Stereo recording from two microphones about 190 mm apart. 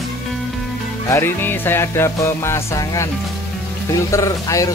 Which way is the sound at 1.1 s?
10° left (ahead or behind).